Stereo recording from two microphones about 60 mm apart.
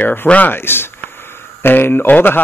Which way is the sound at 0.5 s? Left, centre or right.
Left.